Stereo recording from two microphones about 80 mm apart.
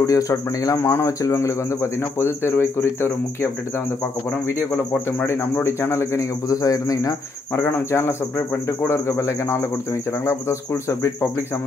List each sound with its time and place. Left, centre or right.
0.0 s speech: left
0.7 s speech: left
5.2 s speech: left
7.5 s speech: left